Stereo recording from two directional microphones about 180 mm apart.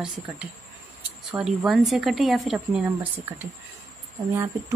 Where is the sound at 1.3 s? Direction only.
10° right (ahead or behind).